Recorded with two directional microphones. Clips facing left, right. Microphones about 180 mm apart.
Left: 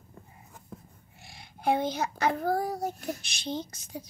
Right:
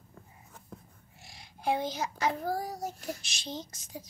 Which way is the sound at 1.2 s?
60° left (ahead or behind).